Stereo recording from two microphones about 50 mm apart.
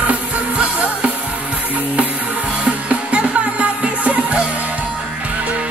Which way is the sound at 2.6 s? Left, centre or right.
Right.